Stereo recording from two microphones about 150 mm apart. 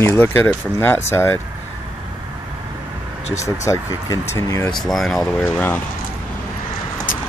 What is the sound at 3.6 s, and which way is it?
Speech, 20° left (ahead or behind).